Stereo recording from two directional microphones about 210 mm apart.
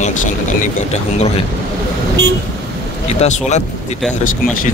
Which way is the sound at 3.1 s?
30° left (ahead or behind).